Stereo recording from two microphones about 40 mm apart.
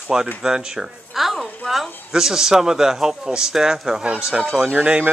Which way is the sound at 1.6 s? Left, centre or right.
Centre.